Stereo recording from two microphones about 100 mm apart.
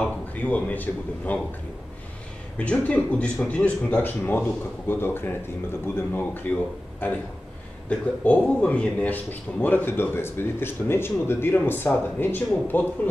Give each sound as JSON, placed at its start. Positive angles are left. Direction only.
{"t": 0.0, "sound": "speech", "side_deg": 15}
{"t": 2.6, "sound": "speech", "side_deg": 15}